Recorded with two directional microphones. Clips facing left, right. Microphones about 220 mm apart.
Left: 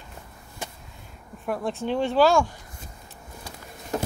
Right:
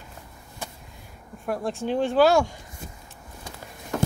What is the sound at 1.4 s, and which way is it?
Speech, centre (ahead or behind).